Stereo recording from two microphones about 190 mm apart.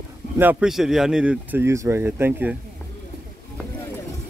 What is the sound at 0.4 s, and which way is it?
Speech, 5° right (ahead or behind).